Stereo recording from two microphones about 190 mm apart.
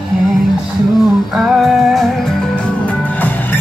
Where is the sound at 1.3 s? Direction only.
Centre (ahead or behind).